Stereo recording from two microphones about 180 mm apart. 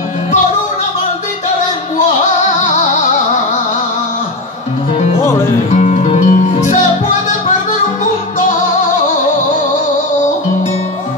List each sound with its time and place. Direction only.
4.9 s music: 35° left (ahead or behind)